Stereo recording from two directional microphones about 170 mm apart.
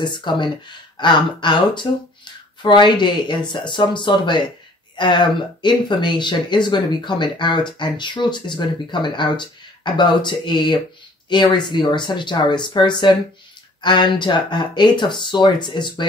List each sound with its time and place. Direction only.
0.0 s speech: 25° left (ahead or behind)